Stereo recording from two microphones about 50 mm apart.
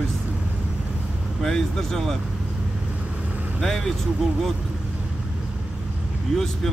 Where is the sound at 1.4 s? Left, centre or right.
Centre.